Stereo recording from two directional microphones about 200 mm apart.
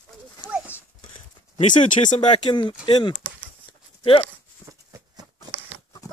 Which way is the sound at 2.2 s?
20° left (ahead or behind).